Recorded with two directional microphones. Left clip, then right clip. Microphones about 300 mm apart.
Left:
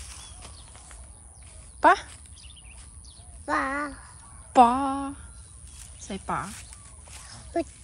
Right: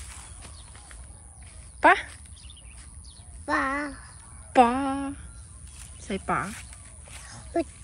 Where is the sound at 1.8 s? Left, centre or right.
Centre.